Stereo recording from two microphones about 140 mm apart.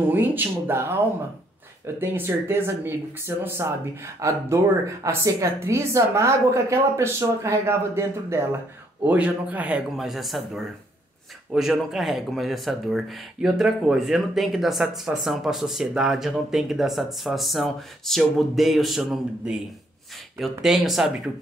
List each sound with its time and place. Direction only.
0.1 s speech: 15° right (ahead or behind)
2.0 s speech: 15° right (ahead or behind)
20.6 s speech: centre (ahead or behind)